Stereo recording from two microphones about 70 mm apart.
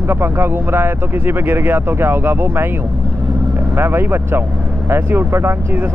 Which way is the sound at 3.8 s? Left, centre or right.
Right.